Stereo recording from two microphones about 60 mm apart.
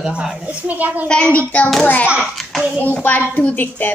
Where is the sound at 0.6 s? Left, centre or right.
Right.